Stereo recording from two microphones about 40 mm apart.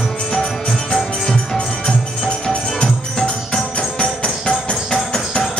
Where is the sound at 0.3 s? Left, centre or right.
Centre.